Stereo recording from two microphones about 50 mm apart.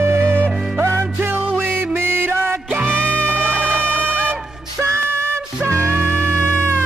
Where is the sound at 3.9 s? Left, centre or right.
Left.